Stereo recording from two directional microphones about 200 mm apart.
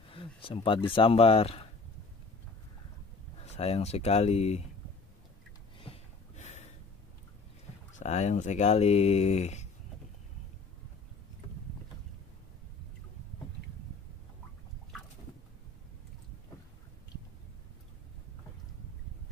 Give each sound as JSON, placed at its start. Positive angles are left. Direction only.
{"t": 0.1, "sound": "speech", "side_deg": 25}
{"t": 3.5, "sound": "speech", "side_deg": 30}
{"t": 5.9, "sound": "a sound", "side_deg": 35}
{"t": 8.0, "sound": "speech", "side_deg": 35}